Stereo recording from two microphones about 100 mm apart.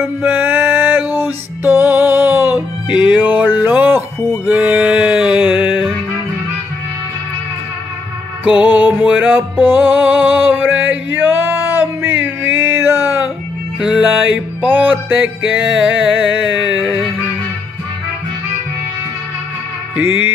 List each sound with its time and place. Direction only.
0.0 s music: 20° right (ahead or behind)
8.5 s music: 15° right (ahead or behind)
13.7 s music: 5° right (ahead or behind)
16.3 s music: 10° right (ahead or behind)
20.0 s music: 20° right (ahead or behind)